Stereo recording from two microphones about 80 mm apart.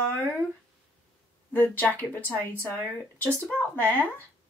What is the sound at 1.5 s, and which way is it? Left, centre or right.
A woman's voice, left.